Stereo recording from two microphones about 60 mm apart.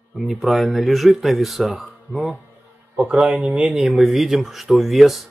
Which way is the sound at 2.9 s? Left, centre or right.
Centre.